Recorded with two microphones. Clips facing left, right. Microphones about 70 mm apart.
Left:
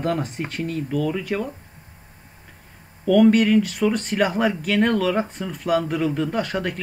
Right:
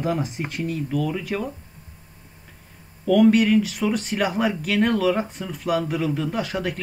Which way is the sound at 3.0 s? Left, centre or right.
Centre.